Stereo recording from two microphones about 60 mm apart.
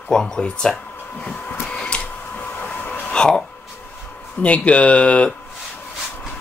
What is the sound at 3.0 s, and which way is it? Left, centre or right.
Speech, centre.